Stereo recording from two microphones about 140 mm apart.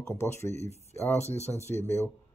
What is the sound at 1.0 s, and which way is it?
Speech, 50° left (ahead or behind).